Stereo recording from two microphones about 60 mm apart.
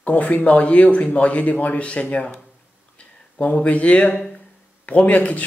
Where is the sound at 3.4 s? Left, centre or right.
Left.